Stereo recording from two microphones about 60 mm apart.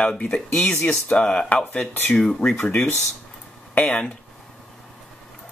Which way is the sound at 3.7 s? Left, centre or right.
Centre.